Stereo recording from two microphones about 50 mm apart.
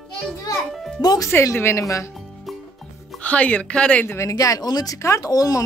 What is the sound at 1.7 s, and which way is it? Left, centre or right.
Speech, left.